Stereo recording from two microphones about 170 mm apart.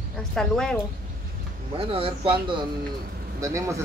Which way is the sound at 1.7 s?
30° right (ahead or behind).